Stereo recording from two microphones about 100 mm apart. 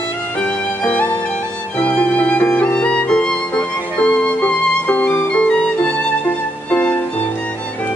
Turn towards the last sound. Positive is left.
turn(degrees=15)  # may be behind; listen again after turning